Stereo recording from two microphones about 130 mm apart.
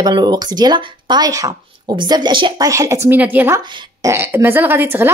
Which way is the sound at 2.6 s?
25° right (ahead or behind).